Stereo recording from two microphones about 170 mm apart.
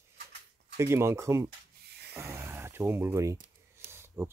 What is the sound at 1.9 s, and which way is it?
Rub, 75° right (ahead or behind).